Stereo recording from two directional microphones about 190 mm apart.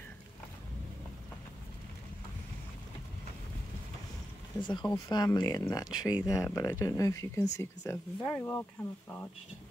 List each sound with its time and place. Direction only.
4.6 s speech: 25° left (ahead or behind)